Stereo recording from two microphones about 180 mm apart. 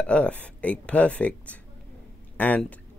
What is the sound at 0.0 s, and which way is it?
Speech, 5° left (ahead or behind).